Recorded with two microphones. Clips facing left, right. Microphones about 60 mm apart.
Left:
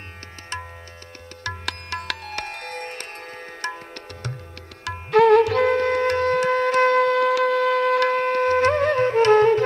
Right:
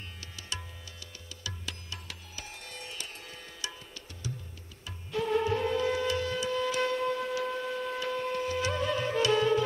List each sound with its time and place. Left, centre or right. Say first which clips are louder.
1.4 s music: left 12 dB; left
4.8 s music: left 17 dB; left